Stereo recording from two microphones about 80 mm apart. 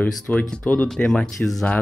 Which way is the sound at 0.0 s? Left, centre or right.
Centre.